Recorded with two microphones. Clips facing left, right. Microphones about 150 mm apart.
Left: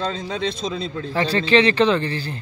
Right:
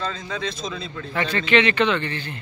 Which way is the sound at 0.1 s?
30° left (ahead or behind).